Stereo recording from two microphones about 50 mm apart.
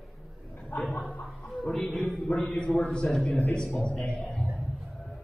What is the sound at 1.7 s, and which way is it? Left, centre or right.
A man's voice, centre.